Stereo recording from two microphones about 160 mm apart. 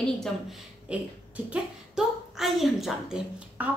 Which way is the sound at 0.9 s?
5° right (ahead or behind).